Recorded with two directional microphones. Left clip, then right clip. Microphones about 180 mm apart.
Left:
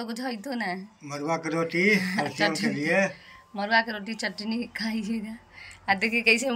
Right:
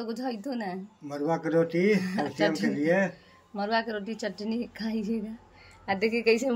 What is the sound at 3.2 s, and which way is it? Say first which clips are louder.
A woman's voice: left 1 dB; 5° right (ahead or behind).